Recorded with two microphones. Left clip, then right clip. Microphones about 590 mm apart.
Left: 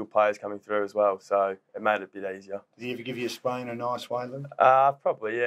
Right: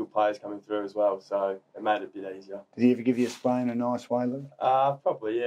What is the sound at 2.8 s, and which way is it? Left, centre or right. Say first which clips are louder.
Speech: right 10 dB; right.